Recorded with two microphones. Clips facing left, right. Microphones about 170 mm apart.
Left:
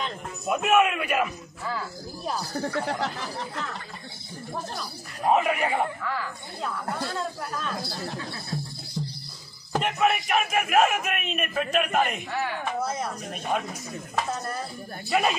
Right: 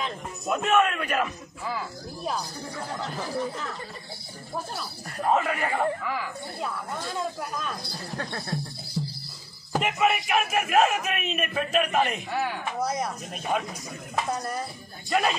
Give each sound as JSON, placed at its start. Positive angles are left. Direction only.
{"t": 0.5, "sound": "a man's voice", "side_deg": 10}
{"t": 2.5, "sound": "speech", "side_deg": 75}
{"t": 5.2, "sound": "a man's voice", "side_deg": 15}
{"t": 6.0, "sound": "speech", "side_deg": -10}
{"t": 8.2, "sound": "speech", "side_deg": -60}
{"t": 8.5, "sound": "music", "side_deg": -5}
{"t": 9.7, "sound": "a man's voice", "side_deg": -5}
{"t": 12.3, "sound": "speech", "side_deg": -10}
{"t": 13.3, "sound": "a man's voice", "side_deg": 0}
{"t": 15.0, "sound": "a man's voice", "side_deg": 5}